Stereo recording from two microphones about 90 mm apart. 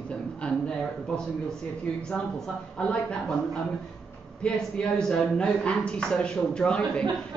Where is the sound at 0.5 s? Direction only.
10° left (ahead or behind).